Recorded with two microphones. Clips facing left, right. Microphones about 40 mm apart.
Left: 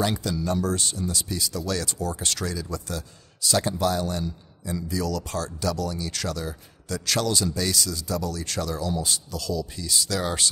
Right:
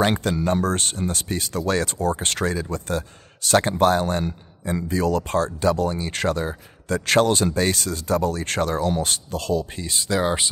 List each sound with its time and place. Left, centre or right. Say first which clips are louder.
0.0 s speech: right 5 dB; right